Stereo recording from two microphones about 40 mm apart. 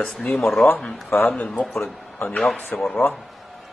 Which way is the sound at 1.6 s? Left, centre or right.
Centre.